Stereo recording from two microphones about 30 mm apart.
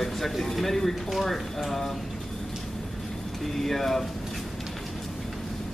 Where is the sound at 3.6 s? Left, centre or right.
Centre.